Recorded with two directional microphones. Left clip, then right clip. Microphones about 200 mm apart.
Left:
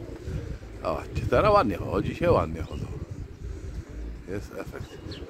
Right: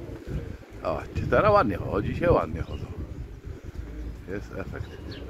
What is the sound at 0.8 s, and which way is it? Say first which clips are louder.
Speech: even; 10° left (ahead or behind).